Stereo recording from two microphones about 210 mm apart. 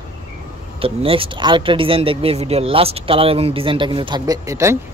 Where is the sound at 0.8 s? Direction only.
25° right (ahead or behind).